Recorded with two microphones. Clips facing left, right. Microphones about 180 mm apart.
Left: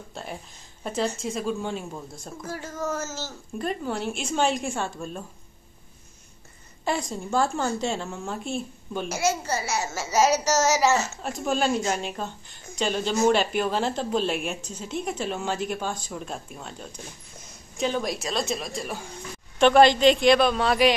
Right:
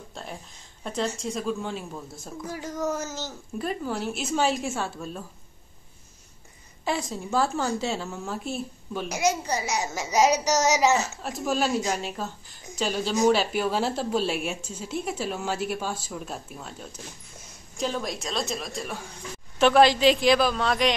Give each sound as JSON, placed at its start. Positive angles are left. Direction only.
{"t": 0.1, "sound": "speech", "side_deg": 0}
{"t": 2.4, "sound": "a child's voice", "side_deg": -15}
{"t": 3.5, "sound": "speech", "side_deg": -5}
{"t": 6.8, "sound": "speech", "side_deg": 0}
{"t": 9.1, "sound": "a child's voice", "side_deg": -15}
{"t": 11.0, "sound": "a child's voice", "side_deg": 0}